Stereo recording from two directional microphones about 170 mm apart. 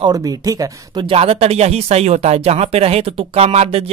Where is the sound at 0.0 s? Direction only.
20° right (ahead or behind).